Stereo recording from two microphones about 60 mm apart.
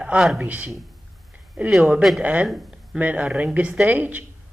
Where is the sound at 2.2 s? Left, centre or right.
Right.